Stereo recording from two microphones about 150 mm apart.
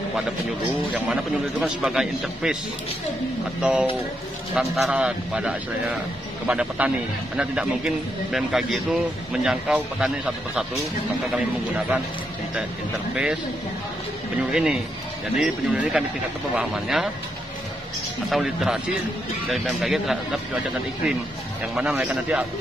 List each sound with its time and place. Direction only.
0.9 s speech: 10° right (ahead or behind)
3.6 s a man's voice: 5° right (ahead or behind)
13.1 s speech: 5° right (ahead or behind)
14.5 s speech: 5° right (ahead or behind)
18.3 s speech: centre (ahead or behind)
21.9 s a man's voice: 10° right (ahead or behind)